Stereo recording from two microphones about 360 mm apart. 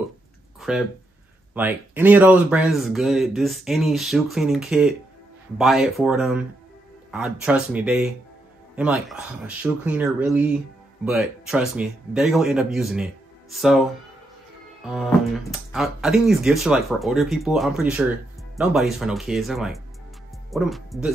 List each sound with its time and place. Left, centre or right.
0.6 s speech: centre
14.9 s speech: centre